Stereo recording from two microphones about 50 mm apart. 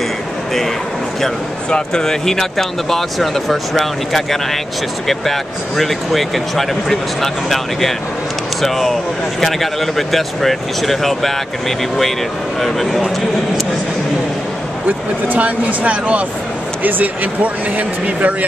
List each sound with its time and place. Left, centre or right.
1.2 s speech: centre
12.5 s speech: centre
14.9 s speech: right